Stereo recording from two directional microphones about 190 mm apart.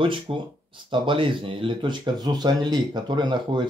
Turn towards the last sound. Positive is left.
turn(degrees=-25)  # may be behind; listen again after turning